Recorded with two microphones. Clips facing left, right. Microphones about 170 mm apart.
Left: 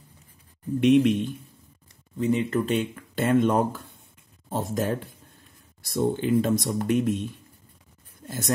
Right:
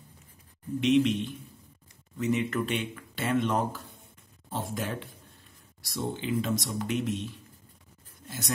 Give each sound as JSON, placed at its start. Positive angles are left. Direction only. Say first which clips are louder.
{"t": 0.7, "sound": "speech", "louder": "left 5 dB", "side_deg": 50}
{"t": 2.1, "sound": "speech", "louder": "left 4 dB", "side_deg": 30}